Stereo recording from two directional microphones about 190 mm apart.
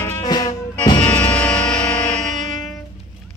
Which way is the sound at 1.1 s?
10° left (ahead or behind).